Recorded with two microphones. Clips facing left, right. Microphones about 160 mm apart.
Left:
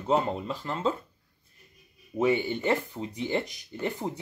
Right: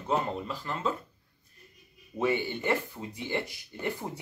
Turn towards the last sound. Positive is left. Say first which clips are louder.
# left 3 dB
turn(degrees=20)  # may be behind; listen again after turning